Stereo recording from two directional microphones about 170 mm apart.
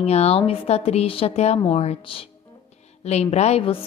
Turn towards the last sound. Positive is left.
turn(degrees=35)  # may be behind; listen again after turning